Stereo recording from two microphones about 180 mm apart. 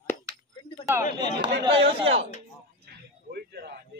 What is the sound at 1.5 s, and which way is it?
Speech, 70° right (ahead or behind).